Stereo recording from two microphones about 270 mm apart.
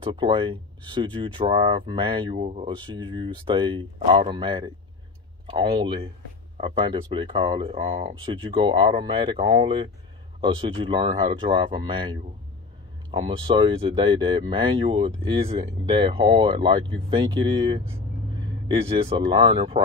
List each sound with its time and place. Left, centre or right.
0.0 s speech: centre